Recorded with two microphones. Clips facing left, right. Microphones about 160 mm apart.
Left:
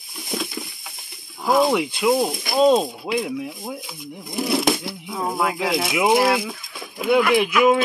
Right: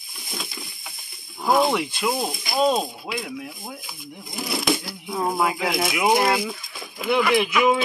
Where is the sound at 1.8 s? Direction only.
15° left (ahead or behind).